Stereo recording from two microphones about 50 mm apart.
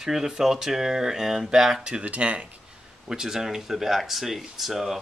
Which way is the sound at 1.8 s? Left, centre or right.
Right.